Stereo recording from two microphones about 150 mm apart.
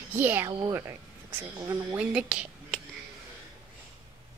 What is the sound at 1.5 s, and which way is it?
Speech, 15° right (ahead or behind).